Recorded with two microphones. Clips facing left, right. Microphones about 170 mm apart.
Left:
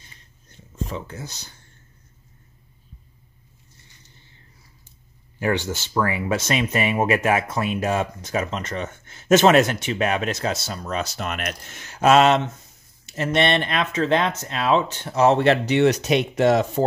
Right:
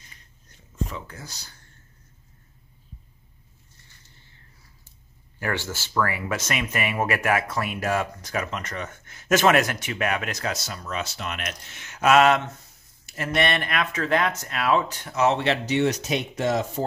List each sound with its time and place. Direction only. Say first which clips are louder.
0.8 s speech: left 7 dB; 25° left (ahead or behind)
5.4 s speech: left 6 dB; 20° left (ahead or behind)
15.3 s speech: left 5 dB; 55° left (ahead or behind)